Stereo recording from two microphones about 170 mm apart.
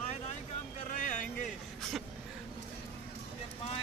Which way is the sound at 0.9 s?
45° left (ahead or behind).